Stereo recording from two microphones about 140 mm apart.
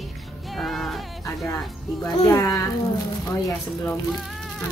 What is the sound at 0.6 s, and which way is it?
Music, centre (ahead or behind).